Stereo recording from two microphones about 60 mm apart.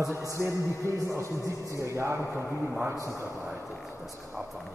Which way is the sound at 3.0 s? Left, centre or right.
Right.